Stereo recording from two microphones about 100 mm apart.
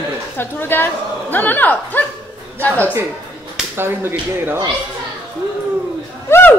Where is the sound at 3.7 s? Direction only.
25° right (ahead or behind).